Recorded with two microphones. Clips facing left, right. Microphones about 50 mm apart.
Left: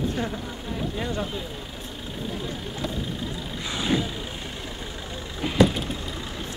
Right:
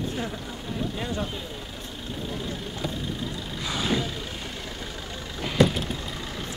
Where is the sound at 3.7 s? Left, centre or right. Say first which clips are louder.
Left 2 dB; centre.